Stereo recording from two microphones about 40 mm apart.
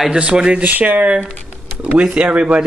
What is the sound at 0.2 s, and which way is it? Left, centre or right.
Speech, right.